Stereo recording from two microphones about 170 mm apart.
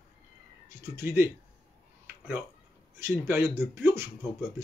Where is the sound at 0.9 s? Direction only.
15° right (ahead or behind).